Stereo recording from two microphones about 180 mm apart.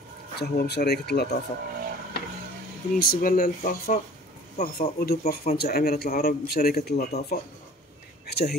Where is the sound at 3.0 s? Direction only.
55° left (ahead or behind).